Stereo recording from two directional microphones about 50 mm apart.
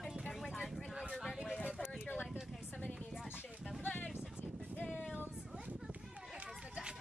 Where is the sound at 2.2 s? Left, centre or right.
Centre.